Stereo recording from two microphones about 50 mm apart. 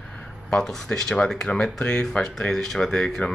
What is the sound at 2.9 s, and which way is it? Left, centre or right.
Speech, centre.